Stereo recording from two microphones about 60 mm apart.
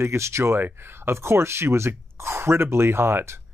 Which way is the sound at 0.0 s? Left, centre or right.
Right.